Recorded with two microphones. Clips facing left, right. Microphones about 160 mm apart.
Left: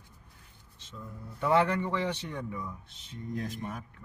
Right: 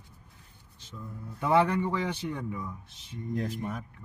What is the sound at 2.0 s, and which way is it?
Speech, 10° right (ahead or behind).